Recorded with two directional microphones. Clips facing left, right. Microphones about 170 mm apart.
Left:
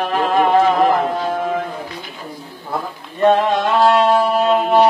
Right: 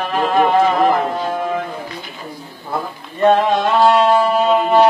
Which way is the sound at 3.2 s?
Centre (ahead or behind).